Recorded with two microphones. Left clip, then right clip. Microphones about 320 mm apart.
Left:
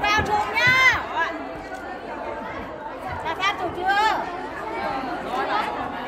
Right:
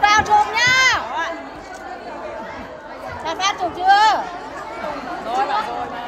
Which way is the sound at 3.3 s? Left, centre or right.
Right.